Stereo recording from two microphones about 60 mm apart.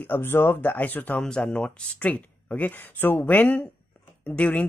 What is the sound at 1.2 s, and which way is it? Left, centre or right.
Speech, centre.